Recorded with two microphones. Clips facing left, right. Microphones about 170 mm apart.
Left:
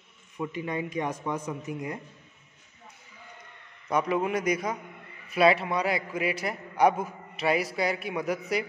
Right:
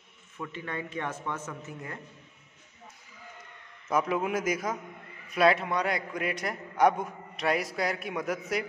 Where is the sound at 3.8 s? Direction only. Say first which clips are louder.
Left 1 dB; centre (ahead or behind).